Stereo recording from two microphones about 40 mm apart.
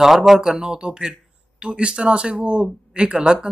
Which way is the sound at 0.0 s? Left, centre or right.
Centre.